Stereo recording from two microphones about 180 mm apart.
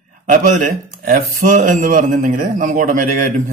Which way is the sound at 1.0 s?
45° right (ahead or behind).